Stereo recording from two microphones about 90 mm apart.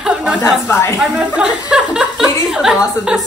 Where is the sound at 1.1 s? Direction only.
15° right (ahead or behind).